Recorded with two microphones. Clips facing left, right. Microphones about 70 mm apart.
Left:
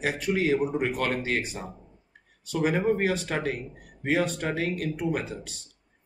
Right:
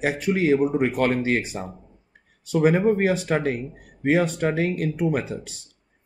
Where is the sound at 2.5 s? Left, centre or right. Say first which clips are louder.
Right 6 dB; right.